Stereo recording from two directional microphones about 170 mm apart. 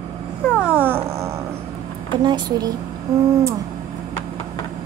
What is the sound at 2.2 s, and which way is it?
Speech, 25° right (ahead or behind).